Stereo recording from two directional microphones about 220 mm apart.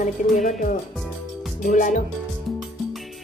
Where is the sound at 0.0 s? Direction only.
35° left (ahead or behind).